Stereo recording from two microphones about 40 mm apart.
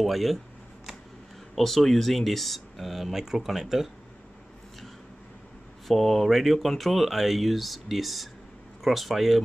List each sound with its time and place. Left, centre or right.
0.0 s speech: centre
1.5 s speech: centre
5.9 s speech: centre